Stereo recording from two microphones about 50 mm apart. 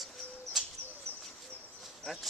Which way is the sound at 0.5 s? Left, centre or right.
Centre.